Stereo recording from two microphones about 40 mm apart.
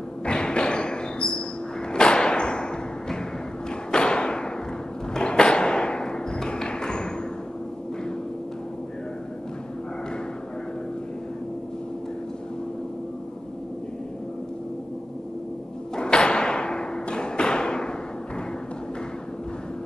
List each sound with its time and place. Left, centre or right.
0.2 s thump: left
5.1 s a sound: centre
16.0 s thump: left